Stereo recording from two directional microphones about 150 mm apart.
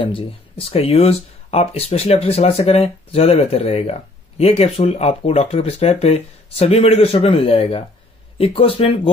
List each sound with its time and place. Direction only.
0.0 s speech: 35° left (ahead or behind)